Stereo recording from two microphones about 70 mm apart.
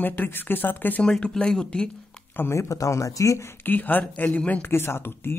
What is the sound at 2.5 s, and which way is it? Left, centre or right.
Speech, left.